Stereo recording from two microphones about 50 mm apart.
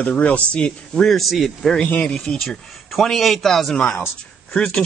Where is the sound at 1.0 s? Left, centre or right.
Centre.